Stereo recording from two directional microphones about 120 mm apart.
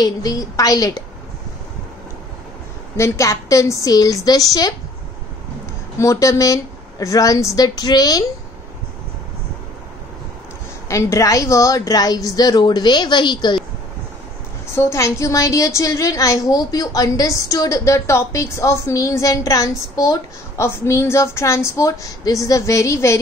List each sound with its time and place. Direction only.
0.0 s a woman's voice: 30° left (ahead or behind)
3.0 s a woman's voice: 25° left (ahead or behind)
5.9 s a woman's voice: 25° left (ahead or behind)
10.9 s a woman's voice: 25° left (ahead or behind)
14.8 s a woman's voice: 25° left (ahead or behind)